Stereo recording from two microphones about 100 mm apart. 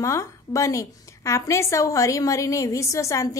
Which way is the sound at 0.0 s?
30° left (ahead or behind).